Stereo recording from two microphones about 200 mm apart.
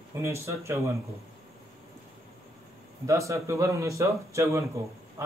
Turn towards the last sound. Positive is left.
turn(degrees=-15)  # may be behind; listen again after turning